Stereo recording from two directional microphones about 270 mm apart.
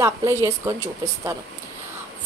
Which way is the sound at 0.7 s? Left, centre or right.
Right.